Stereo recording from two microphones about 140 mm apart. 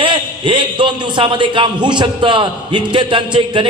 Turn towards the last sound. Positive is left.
turn(degrees=-35)  # may be behind; listen again after turning